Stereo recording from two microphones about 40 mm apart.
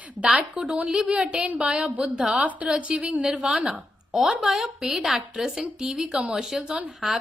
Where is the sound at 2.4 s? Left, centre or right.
Right.